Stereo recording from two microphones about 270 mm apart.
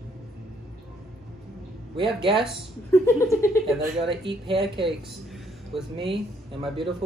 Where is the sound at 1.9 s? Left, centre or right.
Centre.